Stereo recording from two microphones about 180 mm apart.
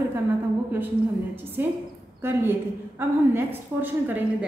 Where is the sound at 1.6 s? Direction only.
10° right (ahead or behind).